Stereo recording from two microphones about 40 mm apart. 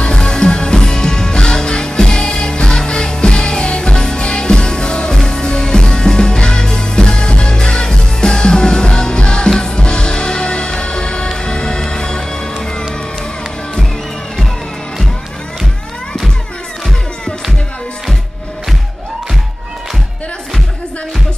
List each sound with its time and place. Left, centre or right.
0.0 s music: centre